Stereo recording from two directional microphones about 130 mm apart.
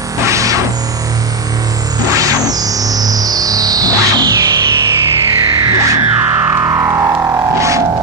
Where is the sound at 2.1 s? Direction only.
25° right (ahead or behind).